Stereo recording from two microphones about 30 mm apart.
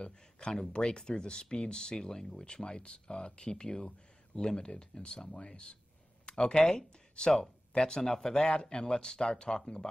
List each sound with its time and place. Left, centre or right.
0.0 s speech: left